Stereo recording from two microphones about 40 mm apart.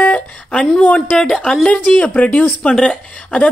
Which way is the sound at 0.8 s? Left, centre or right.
Left.